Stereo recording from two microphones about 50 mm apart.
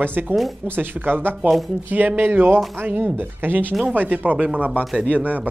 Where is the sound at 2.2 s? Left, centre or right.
Right.